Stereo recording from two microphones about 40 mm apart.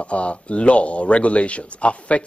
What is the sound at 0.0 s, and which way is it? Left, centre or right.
Speech, left.